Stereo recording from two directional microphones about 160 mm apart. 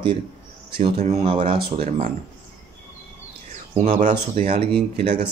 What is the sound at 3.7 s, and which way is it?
Speech, 50° right (ahead or behind).